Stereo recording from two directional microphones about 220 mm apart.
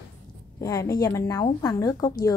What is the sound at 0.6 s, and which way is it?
A woman's voice, 15° left (ahead or behind).